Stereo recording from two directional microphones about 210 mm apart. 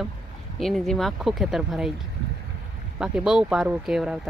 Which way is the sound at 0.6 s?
Centre (ahead or behind).